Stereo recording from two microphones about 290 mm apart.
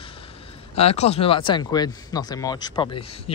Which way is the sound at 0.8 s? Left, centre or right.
Left.